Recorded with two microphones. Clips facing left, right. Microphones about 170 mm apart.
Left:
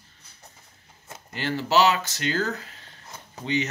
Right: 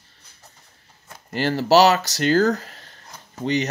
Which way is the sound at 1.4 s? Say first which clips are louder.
Right 6 dB; 40° right (ahead or behind).